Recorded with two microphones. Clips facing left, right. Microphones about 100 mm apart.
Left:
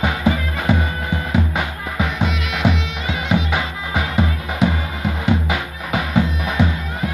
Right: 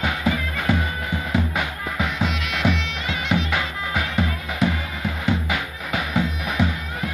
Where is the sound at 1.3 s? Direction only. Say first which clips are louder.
Left 2 dB; 5° left (ahead or behind).